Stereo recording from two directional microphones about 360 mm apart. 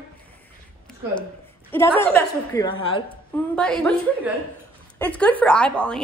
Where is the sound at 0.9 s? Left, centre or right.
Centre.